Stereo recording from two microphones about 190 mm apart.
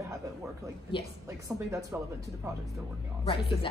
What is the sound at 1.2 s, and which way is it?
Speech, 15° right (ahead or behind).